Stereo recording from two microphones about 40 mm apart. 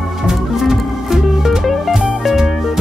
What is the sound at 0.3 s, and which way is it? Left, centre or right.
Music, centre.